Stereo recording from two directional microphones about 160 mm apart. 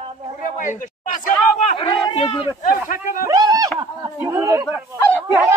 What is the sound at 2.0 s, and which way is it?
Speech, 30° left (ahead or behind).